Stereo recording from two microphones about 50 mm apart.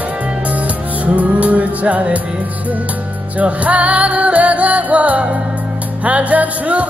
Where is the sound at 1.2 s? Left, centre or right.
Right.